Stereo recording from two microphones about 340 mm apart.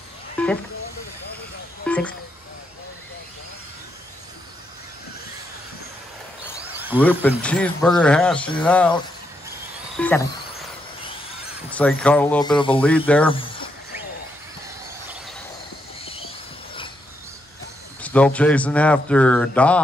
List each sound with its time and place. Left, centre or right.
0.4 s a sound: centre
1.9 s speech: centre
6.8 s a man's voice: centre
9.9 s frog: centre
12.0 s a man's voice: centre
13.3 s a sound: centre
16.0 s train: centre
18.0 s a man's voice: centre